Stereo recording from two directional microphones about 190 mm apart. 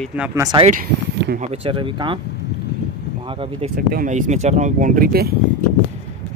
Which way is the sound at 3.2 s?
25° right (ahead or behind).